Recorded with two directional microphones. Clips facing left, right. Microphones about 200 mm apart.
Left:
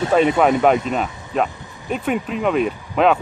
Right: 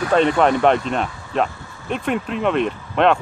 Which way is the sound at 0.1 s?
5° left (ahead or behind).